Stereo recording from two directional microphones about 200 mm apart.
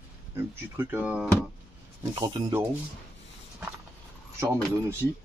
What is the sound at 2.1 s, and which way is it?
Speech, 25° right (ahead or behind).